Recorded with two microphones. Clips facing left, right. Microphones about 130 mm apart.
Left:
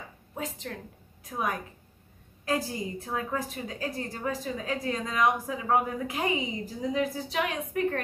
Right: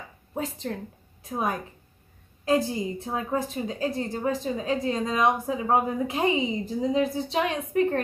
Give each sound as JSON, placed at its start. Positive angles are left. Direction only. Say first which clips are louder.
{"t": 0.3, "sound": "a woman's voice", "louder": "right 5 dB", "side_deg": -30}